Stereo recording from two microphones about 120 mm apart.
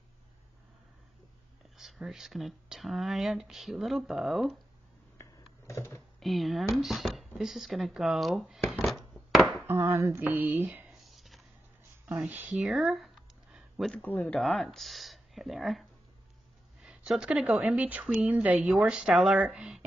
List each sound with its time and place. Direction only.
1.8 s speech: centre (ahead or behind)
5.1 s a sound: 25° left (ahead or behind)
6.1 s speech: centre (ahead or behind)
9.6 s a woman's voice: 20° right (ahead or behind)
10.9 s a sound: centre (ahead or behind)
12.3 s a sound: 10° right (ahead or behind)
14.0 s speech: 15° left (ahead or behind)
14.4 s speech: centre (ahead or behind)
16.8 s a woman's voice: 5° right (ahead or behind)